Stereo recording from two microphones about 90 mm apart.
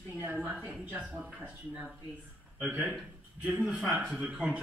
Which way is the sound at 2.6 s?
15° right (ahead or behind).